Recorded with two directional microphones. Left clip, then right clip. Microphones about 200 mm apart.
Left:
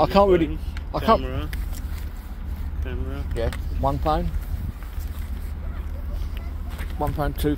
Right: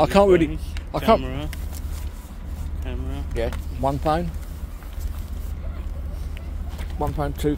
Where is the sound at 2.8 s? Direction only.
60° right (ahead or behind).